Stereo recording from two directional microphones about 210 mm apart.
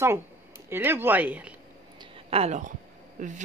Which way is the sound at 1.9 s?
30° right (ahead or behind).